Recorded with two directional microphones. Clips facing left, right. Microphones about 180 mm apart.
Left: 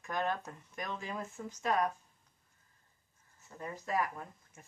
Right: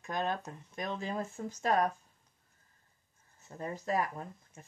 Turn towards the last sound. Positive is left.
turn(degrees=-30)  # may be behind; listen again after turning